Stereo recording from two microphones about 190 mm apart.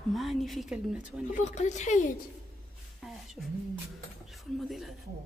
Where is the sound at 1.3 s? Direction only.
40° left (ahead or behind).